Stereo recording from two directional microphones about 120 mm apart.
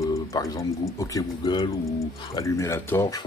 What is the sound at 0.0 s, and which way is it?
Speech, 30° left (ahead or behind).